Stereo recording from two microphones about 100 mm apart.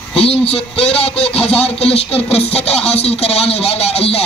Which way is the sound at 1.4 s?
90° left.